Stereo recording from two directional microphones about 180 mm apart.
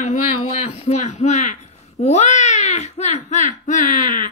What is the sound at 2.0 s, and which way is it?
A woman's voice, 40° left (ahead or behind).